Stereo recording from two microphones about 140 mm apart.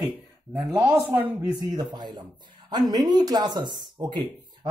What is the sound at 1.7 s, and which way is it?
Speech, 30° right (ahead or behind).